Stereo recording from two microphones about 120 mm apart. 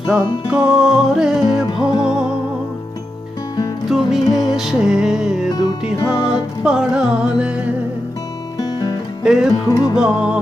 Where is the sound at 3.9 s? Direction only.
Centre (ahead or behind).